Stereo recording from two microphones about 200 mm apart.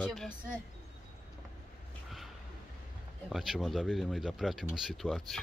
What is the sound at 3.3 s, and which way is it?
Speech, centre (ahead or behind).